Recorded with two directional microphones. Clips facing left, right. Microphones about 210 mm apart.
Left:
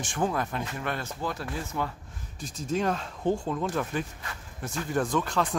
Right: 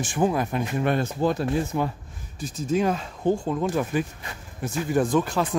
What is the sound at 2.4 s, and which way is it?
Speech, 5° right (ahead or behind).